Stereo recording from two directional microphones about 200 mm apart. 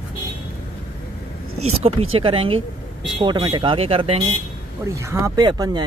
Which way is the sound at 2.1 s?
30° right (ahead or behind).